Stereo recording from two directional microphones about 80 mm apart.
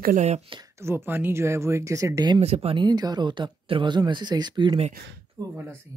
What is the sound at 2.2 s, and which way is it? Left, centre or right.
Speech, right.